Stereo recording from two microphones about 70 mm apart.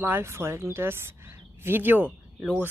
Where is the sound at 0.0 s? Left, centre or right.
Right.